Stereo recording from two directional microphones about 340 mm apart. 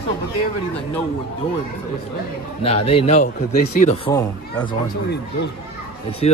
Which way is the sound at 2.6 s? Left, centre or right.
Centre.